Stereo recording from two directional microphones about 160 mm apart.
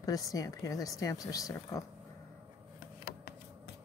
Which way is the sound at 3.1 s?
80° left.